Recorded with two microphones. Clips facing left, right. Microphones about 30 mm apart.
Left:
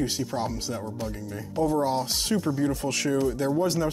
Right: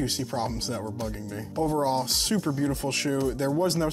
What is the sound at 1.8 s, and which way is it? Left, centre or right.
Speech, right.